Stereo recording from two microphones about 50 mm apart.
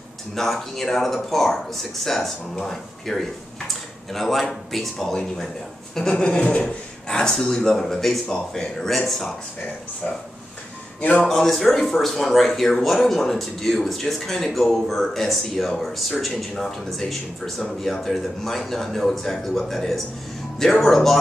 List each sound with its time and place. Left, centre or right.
0.3 s speech: centre
11.0 s a man's voice: left
11.2 s speech: centre